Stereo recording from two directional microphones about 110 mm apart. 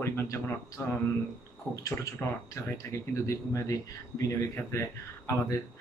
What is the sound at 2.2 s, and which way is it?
Speech, 20° left (ahead or behind).